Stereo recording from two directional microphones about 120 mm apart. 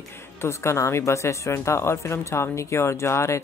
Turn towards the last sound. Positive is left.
turn(degrees=25)  # may be behind; listen again after turning